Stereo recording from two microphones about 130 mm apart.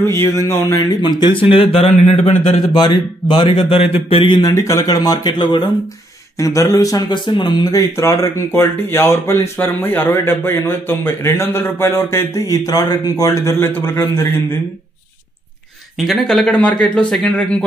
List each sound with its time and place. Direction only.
0.0 s speech: 20° left (ahead or behind)
1.6 s speech: 50° left (ahead or behind)
2.7 s a man's voice: 35° left (ahead or behind)
6.3 s speech: 25° left (ahead or behind)
7.9 s speech: 20° left (ahead or behind)
16.1 s a man's voice: 5° left (ahead or behind)